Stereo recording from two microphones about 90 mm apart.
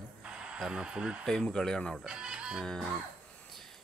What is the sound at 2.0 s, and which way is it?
Speech, 10° right (ahead or behind).